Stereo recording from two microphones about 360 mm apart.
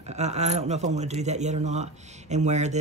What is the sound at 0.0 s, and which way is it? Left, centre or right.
Speech, centre.